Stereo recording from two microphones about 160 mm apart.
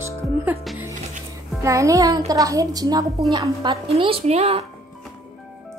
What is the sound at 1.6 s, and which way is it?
A woman's voice, 20° right (ahead or behind).